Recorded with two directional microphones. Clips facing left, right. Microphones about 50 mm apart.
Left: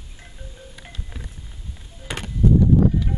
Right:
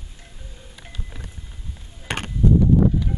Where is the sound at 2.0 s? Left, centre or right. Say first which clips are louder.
Right 3 dB; right.